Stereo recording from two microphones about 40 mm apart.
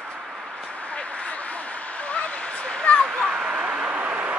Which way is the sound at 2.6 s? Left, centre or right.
Left.